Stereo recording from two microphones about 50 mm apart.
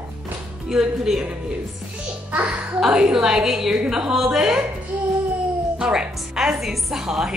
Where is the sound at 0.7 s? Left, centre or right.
Centre.